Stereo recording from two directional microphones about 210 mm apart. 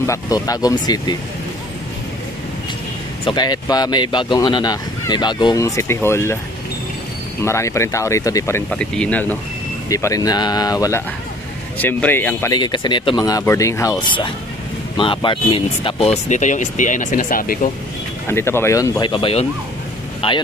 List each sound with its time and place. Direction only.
0.0 s speech: 15° left (ahead or behind)
3.3 s speech: 20° left (ahead or behind)
7.4 s speech: 15° left (ahead or behind)
12.5 s speech: 20° left (ahead or behind); by 17.6 s 40° left (ahead or behind)
18.3 s speech: 10° left (ahead or behind)